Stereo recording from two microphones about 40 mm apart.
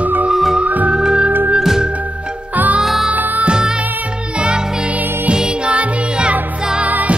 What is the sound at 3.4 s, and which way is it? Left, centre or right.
Music, right.